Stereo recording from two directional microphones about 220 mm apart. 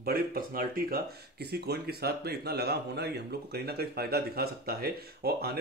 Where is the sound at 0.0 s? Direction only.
45° right (ahead or behind).